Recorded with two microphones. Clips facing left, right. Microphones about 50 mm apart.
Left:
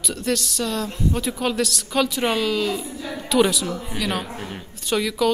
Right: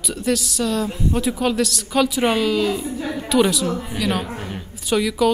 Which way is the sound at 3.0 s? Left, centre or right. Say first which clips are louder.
Right 5 dB; right.